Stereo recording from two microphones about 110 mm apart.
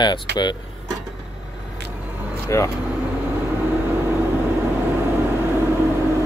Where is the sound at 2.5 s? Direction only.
25° left (ahead or behind).